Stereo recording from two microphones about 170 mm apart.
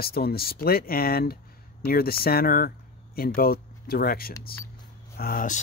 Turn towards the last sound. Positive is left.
turn(degrees=55)  # may be behind; listen again after turning